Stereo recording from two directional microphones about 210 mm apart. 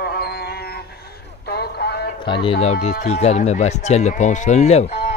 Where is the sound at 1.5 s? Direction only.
50° left (ahead or behind).